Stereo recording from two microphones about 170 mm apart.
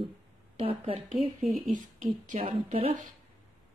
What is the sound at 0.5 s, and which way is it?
Speech, 35° right (ahead or behind).